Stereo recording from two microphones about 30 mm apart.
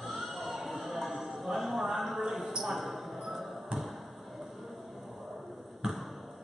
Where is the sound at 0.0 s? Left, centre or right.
Centre.